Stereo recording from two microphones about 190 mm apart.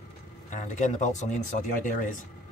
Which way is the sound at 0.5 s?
40° left (ahead or behind).